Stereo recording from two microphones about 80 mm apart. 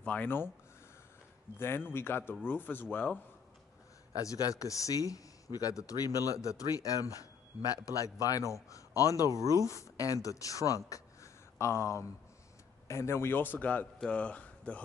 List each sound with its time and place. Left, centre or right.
0.0 s a man's voice: centre
1.6 s a man's voice: left
4.1 s a man's voice: left; by 14.8 s centre